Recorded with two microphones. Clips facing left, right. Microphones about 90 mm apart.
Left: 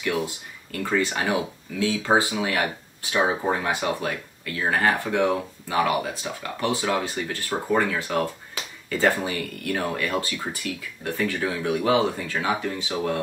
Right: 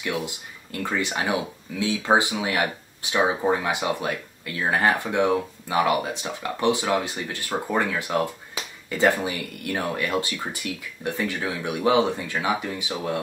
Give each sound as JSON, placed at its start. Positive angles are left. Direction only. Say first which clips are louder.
{"t": 0.0, "sound": "speech", "louder": "left 2 dB", "side_deg": -20}